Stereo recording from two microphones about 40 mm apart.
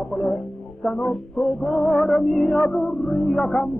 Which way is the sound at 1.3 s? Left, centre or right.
Centre.